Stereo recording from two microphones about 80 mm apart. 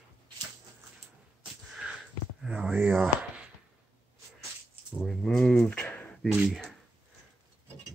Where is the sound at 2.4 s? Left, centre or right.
Centre.